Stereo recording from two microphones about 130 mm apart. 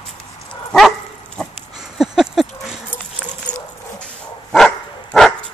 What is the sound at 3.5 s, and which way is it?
Dog, 35° left (ahead or behind).